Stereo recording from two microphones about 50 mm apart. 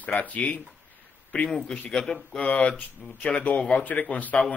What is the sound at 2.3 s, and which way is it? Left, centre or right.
Speech, left.